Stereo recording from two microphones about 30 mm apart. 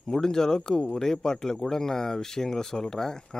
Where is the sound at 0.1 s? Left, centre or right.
Centre.